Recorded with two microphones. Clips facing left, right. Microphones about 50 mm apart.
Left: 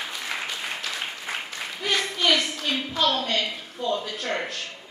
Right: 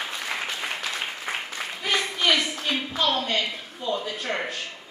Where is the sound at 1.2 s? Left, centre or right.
Centre.